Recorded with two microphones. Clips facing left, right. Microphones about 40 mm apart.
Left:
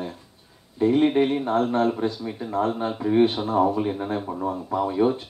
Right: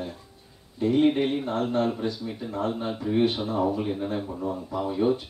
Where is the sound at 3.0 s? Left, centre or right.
Centre.